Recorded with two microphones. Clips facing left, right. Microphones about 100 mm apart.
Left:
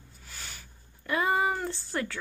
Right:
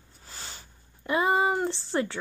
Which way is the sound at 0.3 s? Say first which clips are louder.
Right 2 dB; 30° right (ahead or behind).